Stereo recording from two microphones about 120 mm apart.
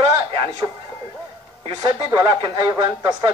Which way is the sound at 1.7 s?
40° right (ahead or behind).